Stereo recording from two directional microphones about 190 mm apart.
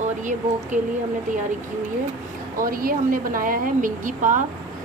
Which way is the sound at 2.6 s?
50° right (ahead or behind).